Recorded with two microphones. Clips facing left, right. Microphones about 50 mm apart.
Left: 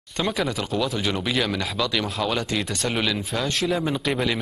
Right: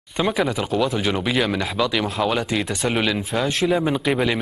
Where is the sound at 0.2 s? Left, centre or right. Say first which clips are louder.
Right 4 dB; centre.